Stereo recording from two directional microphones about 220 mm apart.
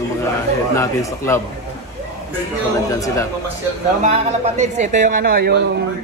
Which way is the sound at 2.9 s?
15° left (ahead or behind).